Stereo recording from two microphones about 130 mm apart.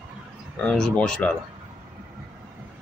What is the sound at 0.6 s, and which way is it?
Speech, 5° left (ahead or behind).